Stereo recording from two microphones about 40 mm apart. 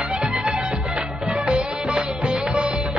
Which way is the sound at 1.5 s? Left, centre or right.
Right.